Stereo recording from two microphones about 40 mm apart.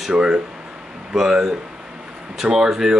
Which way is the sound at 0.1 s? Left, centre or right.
Right.